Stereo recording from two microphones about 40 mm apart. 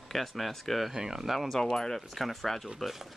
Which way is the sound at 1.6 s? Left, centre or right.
Centre.